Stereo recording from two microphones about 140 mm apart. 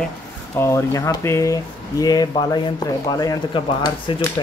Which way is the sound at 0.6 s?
20° left (ahead or behind).